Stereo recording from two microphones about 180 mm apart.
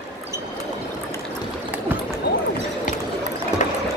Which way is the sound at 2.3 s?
65° left (ahead or behind).